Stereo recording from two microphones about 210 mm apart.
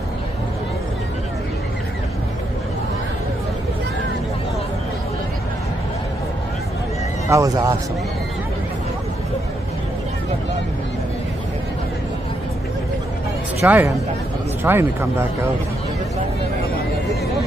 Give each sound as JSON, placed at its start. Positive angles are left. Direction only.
{"t": 7.2, "sound": "speech", "side_deg": -15}
{"t": 13.6, "sound": "speech", "side_deg": -10}